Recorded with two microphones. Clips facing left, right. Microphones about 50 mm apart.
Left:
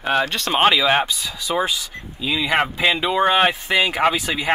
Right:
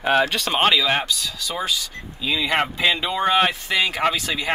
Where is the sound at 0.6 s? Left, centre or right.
Centre.